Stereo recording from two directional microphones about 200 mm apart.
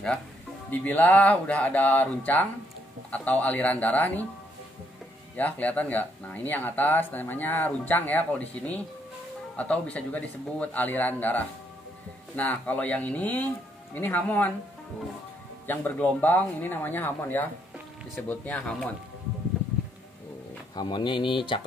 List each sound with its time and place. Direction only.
0.7 s speech: 10° left (ahead or behind)
5.3 s speech: 5° left (ahead or behind)
15.6 s speech: 10° left (ahead or behind)
20.7 s speech: 20° left (ahead or behind)